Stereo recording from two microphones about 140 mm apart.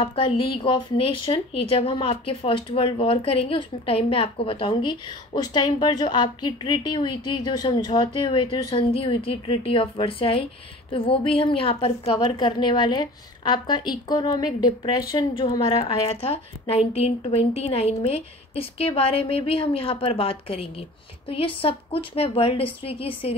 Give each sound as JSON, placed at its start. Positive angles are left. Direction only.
{"t": 0.0, "sound": "a woman's voice", "side_deg": 40}
{"t": 8.3, "sound": "a woman's voice", "side_deg": 40}
{"t": 16.1, "sound": "a woman's voice", "side_deg": 45}